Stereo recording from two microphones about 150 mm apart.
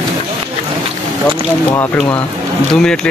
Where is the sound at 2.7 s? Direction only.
5° left (ahead or behind).